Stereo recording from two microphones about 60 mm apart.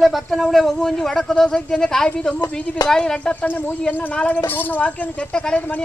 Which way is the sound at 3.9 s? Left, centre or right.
Left.